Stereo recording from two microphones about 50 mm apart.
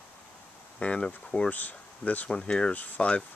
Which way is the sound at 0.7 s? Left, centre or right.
Left.